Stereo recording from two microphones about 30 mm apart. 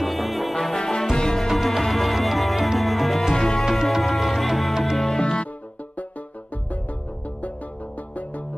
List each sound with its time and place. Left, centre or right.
0.0 s music: centre
0.7 s music: left
1.6 s music: centre
3.3 s music: left
4.0 s music: centre
5.2 s music: left